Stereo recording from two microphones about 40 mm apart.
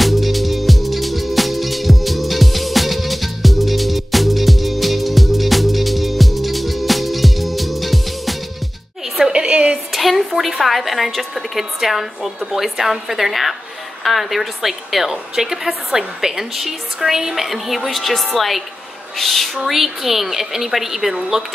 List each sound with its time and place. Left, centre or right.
0.0 s music: centre
9.3 s music: right
9.9 s a woman's voice: centre